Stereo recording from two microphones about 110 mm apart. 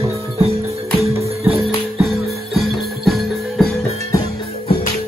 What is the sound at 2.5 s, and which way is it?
Music, centre (ahead or behind).